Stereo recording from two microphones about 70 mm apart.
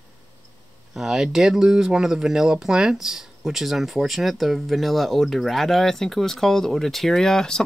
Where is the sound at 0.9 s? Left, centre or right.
Centre.